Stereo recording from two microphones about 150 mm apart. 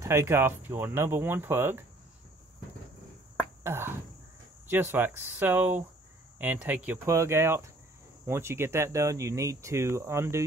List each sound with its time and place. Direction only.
0.0 s speech: 20° right (ahead or behind)
3.6 s speech: 15° right (ahead or behind)